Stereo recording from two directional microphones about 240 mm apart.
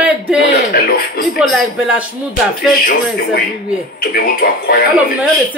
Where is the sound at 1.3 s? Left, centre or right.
Centre.